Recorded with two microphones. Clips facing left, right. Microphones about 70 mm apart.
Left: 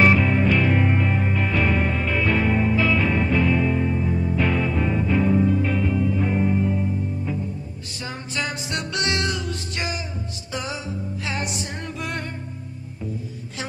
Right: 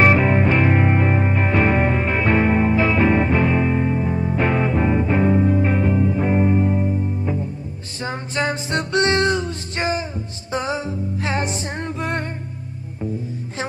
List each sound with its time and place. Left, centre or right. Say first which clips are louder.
0.0 s music: right 2 dB; right